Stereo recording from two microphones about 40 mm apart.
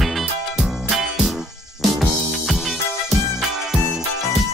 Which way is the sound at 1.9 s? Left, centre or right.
Centre.